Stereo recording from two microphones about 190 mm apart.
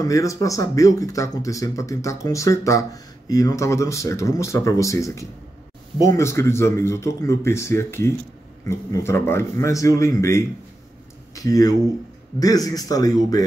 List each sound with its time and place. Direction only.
0.0 s a man's voice: 15° left (ahead or behind)